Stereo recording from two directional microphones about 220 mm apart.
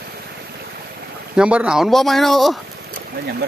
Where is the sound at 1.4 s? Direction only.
5° right (ahead or behind).